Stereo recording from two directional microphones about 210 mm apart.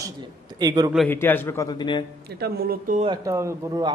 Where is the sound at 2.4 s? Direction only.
45° right (ahead or behind).